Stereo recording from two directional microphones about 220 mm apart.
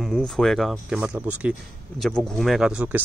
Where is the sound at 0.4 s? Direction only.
Centre (ahead or behind).